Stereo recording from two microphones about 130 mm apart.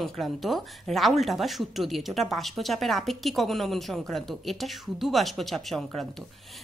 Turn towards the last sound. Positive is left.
turn(degrees=0)  # may be behind; listen again after turning